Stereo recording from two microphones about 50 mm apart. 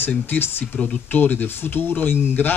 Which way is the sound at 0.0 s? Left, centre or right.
Left.